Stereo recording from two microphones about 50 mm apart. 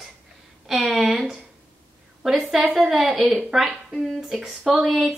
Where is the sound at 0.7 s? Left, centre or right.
Centre.